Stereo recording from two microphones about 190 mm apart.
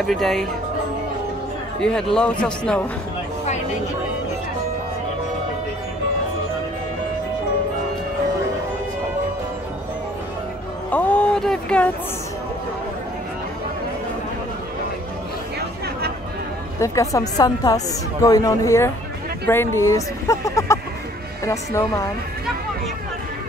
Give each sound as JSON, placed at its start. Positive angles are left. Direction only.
{"t": 0.0, "sound": "speech", "side_deg": 0}
{"t": 1.8, "sound": "speech", "side_deg": 5}
{"t": 10.9, "sound": "a sound", "side_deg": 5}
{"t": 16.8, "sound": "a woman's voice", "side_deg": 15}